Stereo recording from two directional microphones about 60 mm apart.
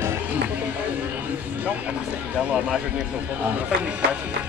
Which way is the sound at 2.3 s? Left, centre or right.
Right.